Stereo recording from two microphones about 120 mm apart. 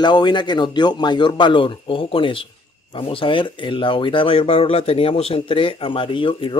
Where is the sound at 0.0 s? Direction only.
40° left (ahead or behind).